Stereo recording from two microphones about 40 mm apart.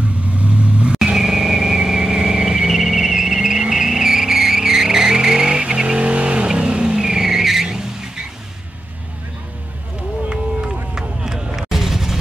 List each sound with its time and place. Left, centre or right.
0.4 s vehicle: right
0.9 s vehicle: centre
11.0 s a sound: centre